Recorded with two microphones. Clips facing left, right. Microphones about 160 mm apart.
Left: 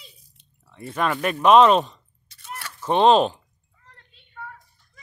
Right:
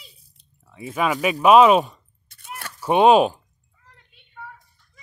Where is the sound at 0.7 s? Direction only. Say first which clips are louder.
Right 2 dB; 5° right (ahead or behind).